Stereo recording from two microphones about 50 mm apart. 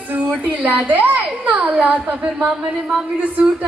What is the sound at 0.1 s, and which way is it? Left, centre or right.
A woman's voice, right.